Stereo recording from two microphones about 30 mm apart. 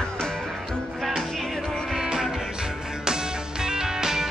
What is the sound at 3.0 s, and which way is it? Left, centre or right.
Music, right.